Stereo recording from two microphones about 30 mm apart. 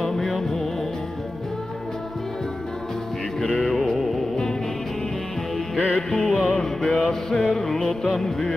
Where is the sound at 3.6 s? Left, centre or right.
Centre.